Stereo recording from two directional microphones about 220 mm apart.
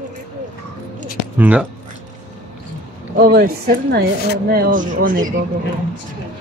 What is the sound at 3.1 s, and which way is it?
Speech, 40° right (ahead or behind).